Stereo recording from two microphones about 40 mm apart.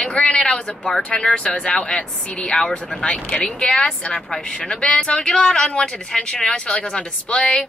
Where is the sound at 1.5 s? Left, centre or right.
Left.